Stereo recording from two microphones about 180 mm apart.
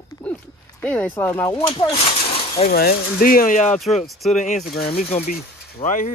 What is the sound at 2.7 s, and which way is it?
Speech, 55° left (ahead or behind).